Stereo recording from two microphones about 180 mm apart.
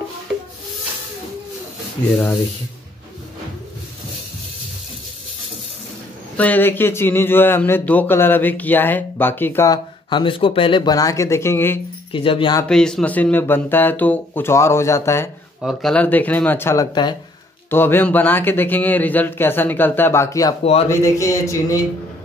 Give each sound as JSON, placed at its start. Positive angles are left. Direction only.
{"t": 2.1, "sound": "speech", "side_deg": 5}
{"t": 6.3, "sound": "speech", "side_deg": 10}
{"t": 10.0, "sound": "speech", "side_deg": 25}
{"t": 12.1, "sound": "speech", "side_deg": 30}
{"t": 12.6, "sound": "speech", "side_deg": 5}
{"t": 15.6, "sound": "speech", "side_deg": 0}
{"t": 17.6, "sound": "speech", "side_deg": 10}